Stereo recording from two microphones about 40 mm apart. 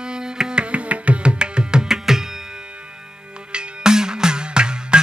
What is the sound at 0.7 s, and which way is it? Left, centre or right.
Music, right.